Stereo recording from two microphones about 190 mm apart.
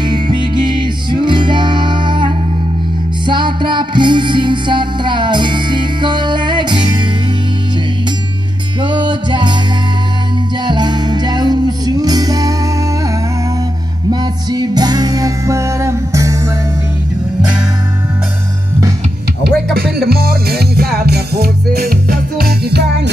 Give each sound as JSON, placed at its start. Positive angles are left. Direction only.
{"t": 0.0, "sound": "music", "side_deg": -25}
{"t": 8.8, "sound": "music", "side_deg": -25}
{"t": 10.6, "sound": "music", "side_deg": -20}
{"t": 14.2, "sound": "music", "side_deg": -20}
{"t": 19.4, "sound": "music", "side_deg": -55}